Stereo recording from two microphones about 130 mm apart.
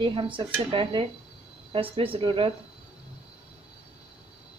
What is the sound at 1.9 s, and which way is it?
Speech, 45° right (ahead or behind).